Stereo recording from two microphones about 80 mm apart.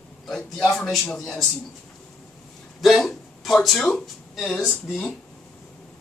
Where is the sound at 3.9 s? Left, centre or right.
Centre.